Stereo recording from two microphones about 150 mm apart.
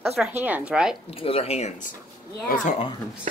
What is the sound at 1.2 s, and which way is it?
Speech, 40° left (ahead or behind).